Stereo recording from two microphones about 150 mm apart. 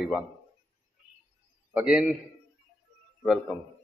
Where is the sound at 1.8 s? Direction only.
5° right (ahead or behind).